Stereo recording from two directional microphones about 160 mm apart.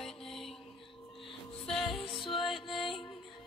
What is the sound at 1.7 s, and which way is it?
Music, 5° left (ahead or behind).